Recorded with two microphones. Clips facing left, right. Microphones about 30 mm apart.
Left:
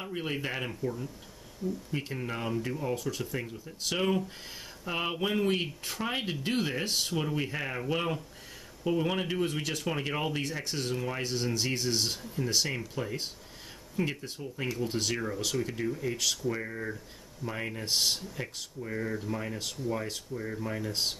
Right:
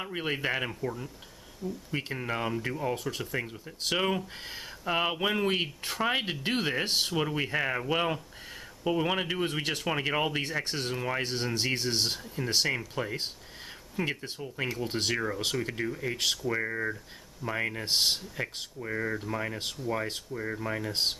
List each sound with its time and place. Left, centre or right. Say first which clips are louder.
0.0 s speech: right 3 dB; right
9.6 s speech: right 2 dB; right
9.8 s speech: right 4 dB; centre